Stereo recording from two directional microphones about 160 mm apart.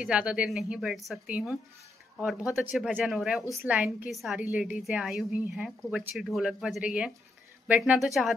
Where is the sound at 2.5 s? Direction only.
Centre (ahead or behind).